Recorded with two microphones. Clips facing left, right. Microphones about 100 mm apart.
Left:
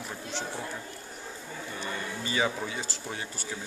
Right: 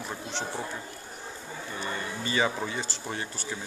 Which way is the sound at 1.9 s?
Centre (ahead or behind).